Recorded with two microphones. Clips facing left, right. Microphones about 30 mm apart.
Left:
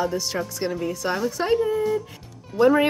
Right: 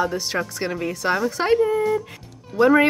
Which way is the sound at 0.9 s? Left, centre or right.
Right.